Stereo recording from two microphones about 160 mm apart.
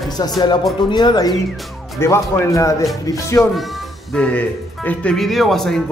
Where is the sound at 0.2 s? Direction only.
25° left (ahead or behind).